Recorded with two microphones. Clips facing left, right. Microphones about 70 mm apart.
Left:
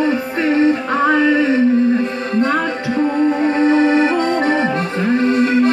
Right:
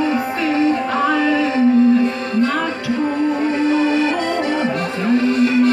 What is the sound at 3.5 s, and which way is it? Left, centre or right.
Music, left.